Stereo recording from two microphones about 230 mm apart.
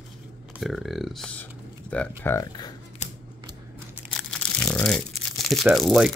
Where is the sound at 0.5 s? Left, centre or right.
Centre.